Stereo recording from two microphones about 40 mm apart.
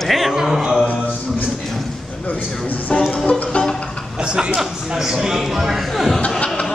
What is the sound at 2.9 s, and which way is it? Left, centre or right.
Music, left.